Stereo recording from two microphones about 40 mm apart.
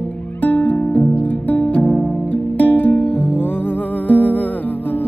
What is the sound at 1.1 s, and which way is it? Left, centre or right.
Music, left.